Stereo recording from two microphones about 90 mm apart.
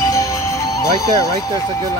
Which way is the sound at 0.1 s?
35° left (ahead or behind).